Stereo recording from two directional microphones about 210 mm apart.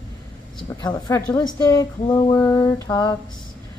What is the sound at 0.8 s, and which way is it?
Speech, 20° left (ahead or behind).